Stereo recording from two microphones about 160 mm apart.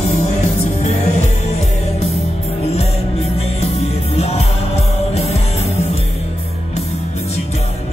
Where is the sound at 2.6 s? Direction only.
40° left (ahead or behind).